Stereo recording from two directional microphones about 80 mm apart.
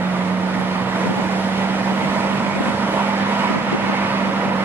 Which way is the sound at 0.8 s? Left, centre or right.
Right.